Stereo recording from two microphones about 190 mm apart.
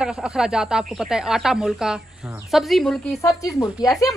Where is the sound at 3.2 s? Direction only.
15° left (ahead or behind).